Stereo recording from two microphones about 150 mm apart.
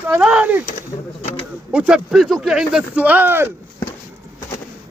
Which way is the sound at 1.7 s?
5° right (ahead or behind).